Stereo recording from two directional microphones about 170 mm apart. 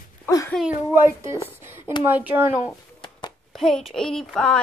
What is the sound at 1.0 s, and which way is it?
Speech, 15° right (ahead or behind).